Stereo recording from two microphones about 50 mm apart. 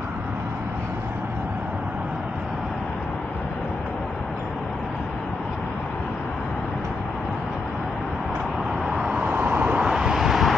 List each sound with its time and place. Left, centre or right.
8.8 s vehicle: centre
9.3 s vehicle: right
9.8 s vehicle: centre